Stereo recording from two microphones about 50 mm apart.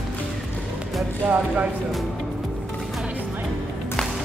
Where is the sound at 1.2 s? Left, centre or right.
Right.